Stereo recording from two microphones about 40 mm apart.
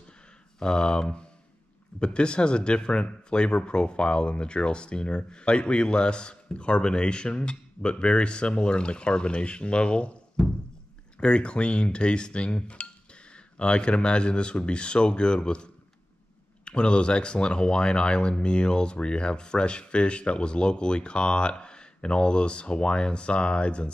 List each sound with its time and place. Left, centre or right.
0.6 s speech: left